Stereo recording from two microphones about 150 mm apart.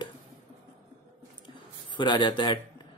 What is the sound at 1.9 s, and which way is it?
Speech, 30° left (ahead or behind).